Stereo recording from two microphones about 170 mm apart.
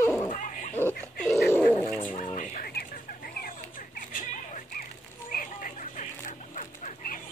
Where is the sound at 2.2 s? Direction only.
45° left (ahead or behind).